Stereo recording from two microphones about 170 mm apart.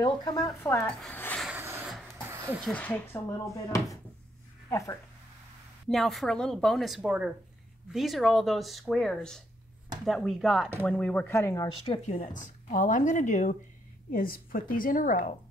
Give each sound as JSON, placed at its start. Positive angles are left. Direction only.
{"t": 0.0, "sound": "speech", "side_deg": 25}
{"t": 1.4, "sound": "rub", "side_deg": -10}
{"t": 1.9, "sound": "a sound", "side_deg": 0}
{"t": 2.2, "sound": "music", "side_deg": -15}
{"t": 2.6, "sound": "speech", "side_deg": 10}
{"t": 5.9, "sound": "speech", "side_deg": 0}
{"t": 11.8, "sound": "speech", "side_deg": 35}
{"t": 14.1, "sound": "a woman's voice", "side_deg": 55}